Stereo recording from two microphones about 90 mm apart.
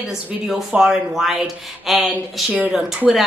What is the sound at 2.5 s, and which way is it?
Speech, 15° right (ahead or behind).